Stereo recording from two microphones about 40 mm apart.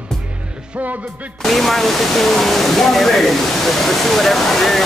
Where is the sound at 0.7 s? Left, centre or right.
Right.